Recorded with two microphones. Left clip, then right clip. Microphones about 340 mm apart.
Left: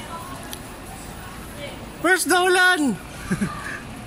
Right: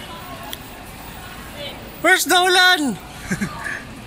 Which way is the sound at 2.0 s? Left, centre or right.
Centre.